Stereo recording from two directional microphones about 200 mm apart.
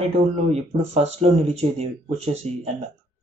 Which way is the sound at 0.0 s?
30° right (ahead or behind).